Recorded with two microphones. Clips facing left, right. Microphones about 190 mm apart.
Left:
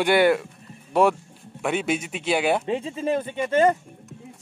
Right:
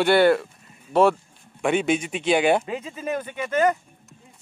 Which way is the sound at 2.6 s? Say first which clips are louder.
Left 4 dB; 30° left (ahead or behind).